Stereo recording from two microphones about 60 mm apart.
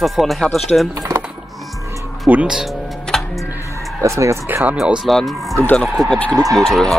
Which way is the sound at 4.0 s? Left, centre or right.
Right.